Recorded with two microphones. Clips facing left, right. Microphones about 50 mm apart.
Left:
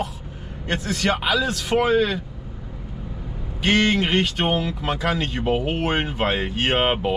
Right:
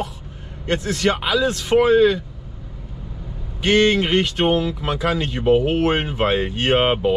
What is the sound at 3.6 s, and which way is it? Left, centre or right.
Speech, centre.